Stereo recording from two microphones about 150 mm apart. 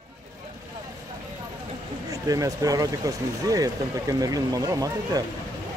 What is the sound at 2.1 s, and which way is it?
Speech, 25° right (ahead or behind).